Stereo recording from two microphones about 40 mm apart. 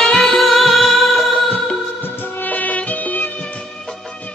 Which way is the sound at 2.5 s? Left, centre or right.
Left.